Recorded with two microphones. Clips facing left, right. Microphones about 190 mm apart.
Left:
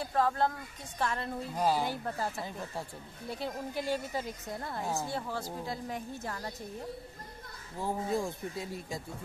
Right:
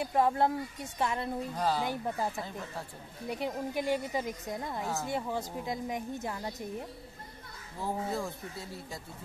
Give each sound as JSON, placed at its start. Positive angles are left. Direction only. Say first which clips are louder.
{"t": 0.0, "sound": "a woman's voice", "louder": "right 2 dB", "side_deg": -20}
{"t": 1.6, "sound": "speech", "louder": "left 2 dB", "side_deg": 10}
{"t": 2.1, "sound": "a woman's voice", "louder": "right 1 dB", "side_deg": -15}
{"t": 7.8, "sound": "speech", "louder": "left 2 dB", "side_deg": 15}